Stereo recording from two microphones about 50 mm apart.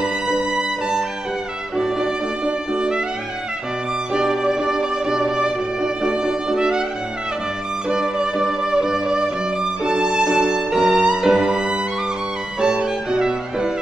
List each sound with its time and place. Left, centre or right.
0.0 s music: centre
4.1 s music: centre
7.9 s music: centre
12.5 s violin: centre